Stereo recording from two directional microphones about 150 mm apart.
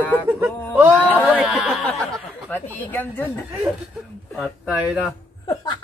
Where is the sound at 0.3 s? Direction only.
15° right (ahead or behind).